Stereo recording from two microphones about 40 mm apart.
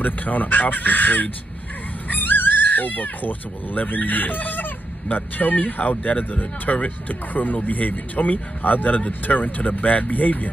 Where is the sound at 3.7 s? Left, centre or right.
Left.